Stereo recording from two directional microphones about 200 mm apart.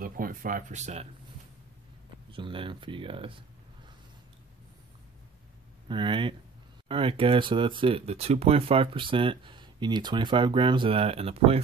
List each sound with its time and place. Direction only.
0.0 s speech: 45° right (ahead or behind)
2.3 s speech: 25° right (ahead or behind)
5.9 s speech: 25° right (ahead or behind)